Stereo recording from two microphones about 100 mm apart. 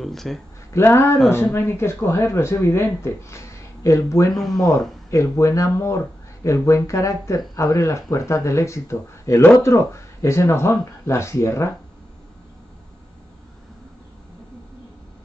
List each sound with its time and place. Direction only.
0.0 s speech: centre (ahead or behind)
0.7 s speech: 25° left (ahead or behind)
4.3 s speech: centre (ahead or behind)
4.6 s speech: 35° left (ahead or behind)